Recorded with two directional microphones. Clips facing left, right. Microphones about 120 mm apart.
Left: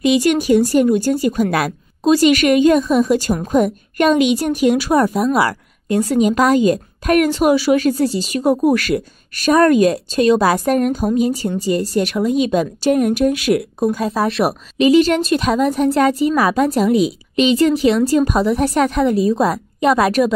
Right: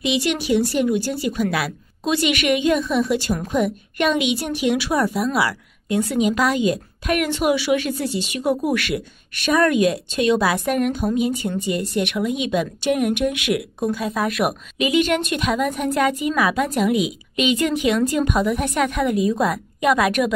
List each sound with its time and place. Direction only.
0.0 s a woman's voice: 45° left (ahead or behind)